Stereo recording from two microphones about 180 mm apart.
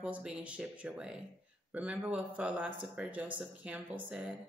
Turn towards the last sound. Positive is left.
turn(degrees=-5)  # may be behind; listen again after turning